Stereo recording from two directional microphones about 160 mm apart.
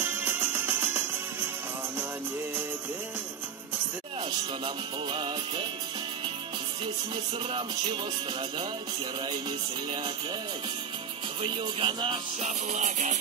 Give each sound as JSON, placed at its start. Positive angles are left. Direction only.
{"t": 0.0, "sound": "music", "side_deg": -10}
{"t": 4.6, "sound": "music", "side_deg": -30}
{"t": 7.5, "sound": "music", "side_deg": -30}
{"t": 11.4, "sound": "music", "side_deg": -30}
{"t": 12.4, "sound": "music", "side_deg": -50}